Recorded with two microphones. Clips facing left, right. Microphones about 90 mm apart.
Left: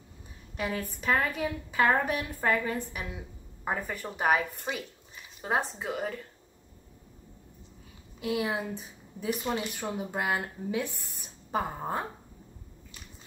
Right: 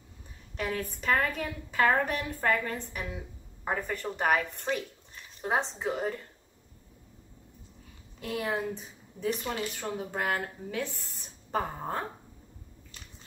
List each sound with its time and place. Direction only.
0.6 s a woman's voice: 5° left (ahead or behind)
8.2 s speech: 5° left (ahead or behind)